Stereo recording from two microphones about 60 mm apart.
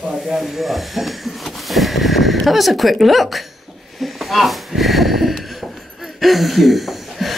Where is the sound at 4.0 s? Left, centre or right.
Centre.